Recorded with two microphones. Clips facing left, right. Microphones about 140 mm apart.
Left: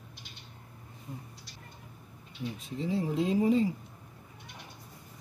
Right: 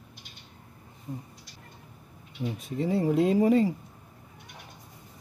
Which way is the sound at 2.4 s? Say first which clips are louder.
Right 5 dB; 60° right (ahead or behind).